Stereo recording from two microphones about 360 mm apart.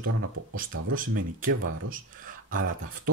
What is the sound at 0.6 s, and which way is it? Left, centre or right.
Speech, right.